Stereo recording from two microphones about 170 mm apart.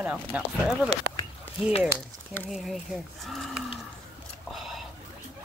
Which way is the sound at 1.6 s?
35° left (ahead or behind).